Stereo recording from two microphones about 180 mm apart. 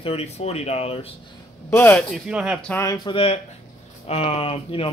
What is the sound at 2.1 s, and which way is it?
Speech, 5° right (ahead or behind).